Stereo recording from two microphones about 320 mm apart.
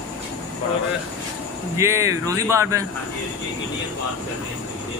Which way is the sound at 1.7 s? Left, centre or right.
Centre.